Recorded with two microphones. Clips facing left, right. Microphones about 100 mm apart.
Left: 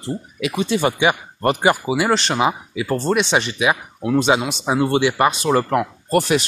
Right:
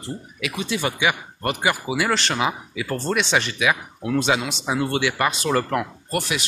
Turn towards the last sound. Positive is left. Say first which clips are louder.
# left 8 dB
turn(degrees=40)  # may be behind; listen again after turning